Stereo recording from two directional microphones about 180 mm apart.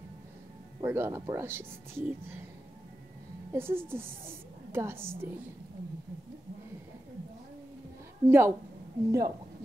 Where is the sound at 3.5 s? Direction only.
10° right (ahead or behind).